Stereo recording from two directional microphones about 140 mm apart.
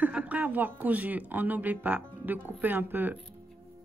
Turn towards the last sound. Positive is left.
turn(degrees=-10)  # may be behind; listen again after turning